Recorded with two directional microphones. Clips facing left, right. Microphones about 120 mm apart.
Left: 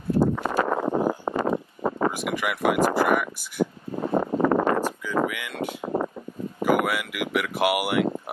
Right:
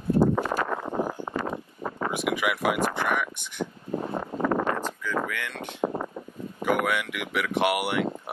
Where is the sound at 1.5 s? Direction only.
45° left (ahead or behind).